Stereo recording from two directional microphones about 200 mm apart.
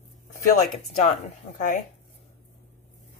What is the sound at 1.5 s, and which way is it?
Speech, 45° left (ahead or behind).